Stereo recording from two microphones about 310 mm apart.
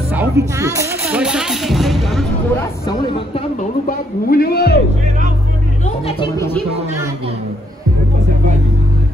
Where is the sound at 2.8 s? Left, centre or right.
Left.